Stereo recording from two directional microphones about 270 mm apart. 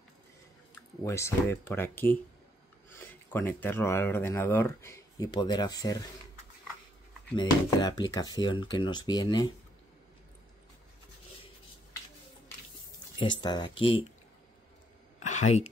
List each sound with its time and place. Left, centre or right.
1.0 s speech: centre
7.3 s speech: centre
13.4 s speech: centre
15.1 s a sound: left